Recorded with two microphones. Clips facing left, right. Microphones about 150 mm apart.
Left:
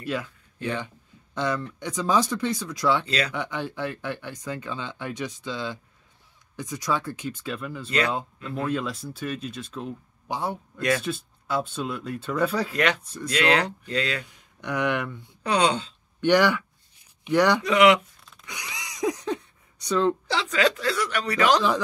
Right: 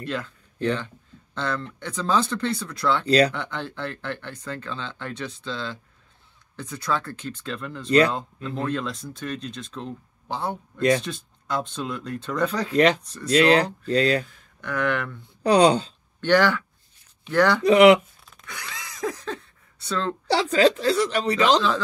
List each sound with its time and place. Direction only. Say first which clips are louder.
0.0 s speech: even; 10° left (ahead or behind)
3.1 s a woman's voice: right 9 dB; 35° right (ahead or behind)
3.3 s speech: left 2 dB; 10° left (ahead or behind)
12.7 s a woman's voice: right 6 dB; 35° right (ahead or behind)
13.0 s speech: left 2 dB; 10° left (ahead or behind)
13.3 s a woman's voice: right 5 dB; 35° right (ahead or behind)
14.2 s speech: left 1 dB; 15° left (ahead or behind)
15.4 s a woman's voice: right 6 dB; 35° right (ahead or behind)
16.2 s speech: even; 15° left (ahead or behind)
17.6 s a woman's voice: right 8 dB; 35° right (ahead or behind)
18.4 s a sound: even; 15° left (ahead or behind)
20.2 s a woman's voice: right 5 dB; 35° right (ahead or behind)